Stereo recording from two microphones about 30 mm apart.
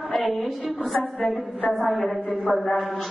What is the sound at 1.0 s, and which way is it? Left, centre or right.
Music, centre.